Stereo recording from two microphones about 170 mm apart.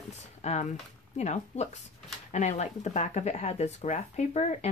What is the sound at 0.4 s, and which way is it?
Speech, 40° left (ahead or behind).